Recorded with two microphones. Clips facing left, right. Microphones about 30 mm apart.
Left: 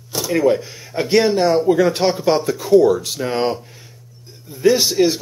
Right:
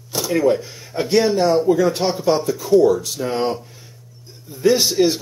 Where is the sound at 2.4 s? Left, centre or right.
Left.